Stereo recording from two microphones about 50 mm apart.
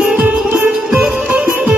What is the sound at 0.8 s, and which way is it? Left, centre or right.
Music, centre.